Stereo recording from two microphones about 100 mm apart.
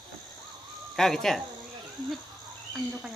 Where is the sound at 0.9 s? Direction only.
5° left (ahead or behind).